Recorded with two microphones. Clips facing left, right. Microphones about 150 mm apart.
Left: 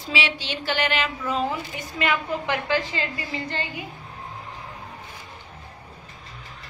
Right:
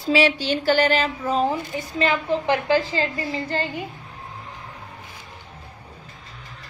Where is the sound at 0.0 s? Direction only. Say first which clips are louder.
Right 9 dB; 45° right (ahead or behind).